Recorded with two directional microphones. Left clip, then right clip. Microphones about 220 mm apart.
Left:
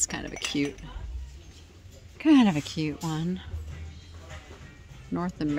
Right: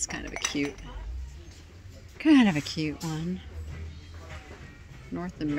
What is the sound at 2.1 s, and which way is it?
Speech, 10° left (ahead or behind).